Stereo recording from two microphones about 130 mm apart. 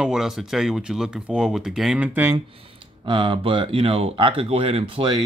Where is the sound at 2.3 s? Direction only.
40° right (ahead or behind).